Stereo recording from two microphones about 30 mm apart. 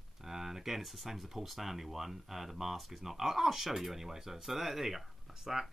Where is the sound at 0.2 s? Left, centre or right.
Centre.